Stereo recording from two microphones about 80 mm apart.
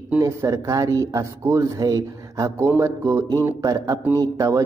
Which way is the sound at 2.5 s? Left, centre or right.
Right.